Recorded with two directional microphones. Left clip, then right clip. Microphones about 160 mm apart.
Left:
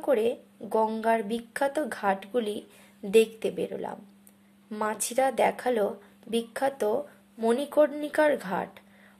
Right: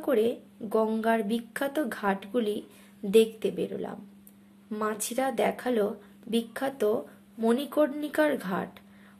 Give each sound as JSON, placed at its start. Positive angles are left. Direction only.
{"t": 0.0, "sound": "a woman's voice", "side_deg": 10}